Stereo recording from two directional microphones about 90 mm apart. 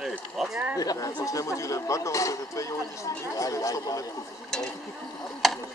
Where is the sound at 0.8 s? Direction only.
40° left (ahead or behind).